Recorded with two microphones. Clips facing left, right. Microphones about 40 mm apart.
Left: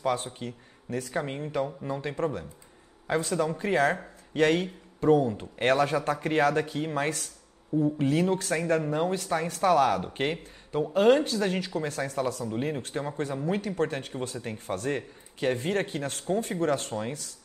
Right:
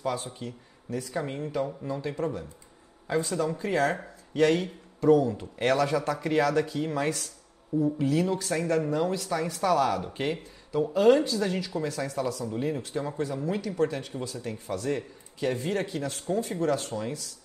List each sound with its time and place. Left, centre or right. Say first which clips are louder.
0.0 s speech: left 2 dB; left
1.2 s speech: right 1 dB; left
1.9 s speech: left 1 dB; left